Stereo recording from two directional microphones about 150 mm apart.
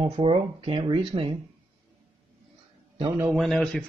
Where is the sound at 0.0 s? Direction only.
35° right (ahead or behind).